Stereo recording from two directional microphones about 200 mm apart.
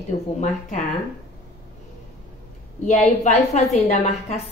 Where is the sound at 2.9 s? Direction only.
35° left (ahead or behind).